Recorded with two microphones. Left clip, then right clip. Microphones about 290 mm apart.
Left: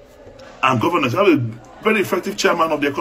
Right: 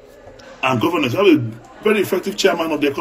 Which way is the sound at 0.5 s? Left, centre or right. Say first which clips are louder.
Left 1 dB; left.